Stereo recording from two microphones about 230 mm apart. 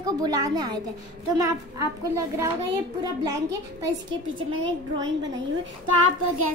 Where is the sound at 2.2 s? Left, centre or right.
Centre.